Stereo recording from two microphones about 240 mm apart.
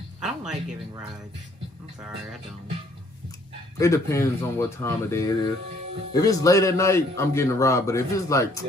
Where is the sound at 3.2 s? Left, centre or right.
Centre.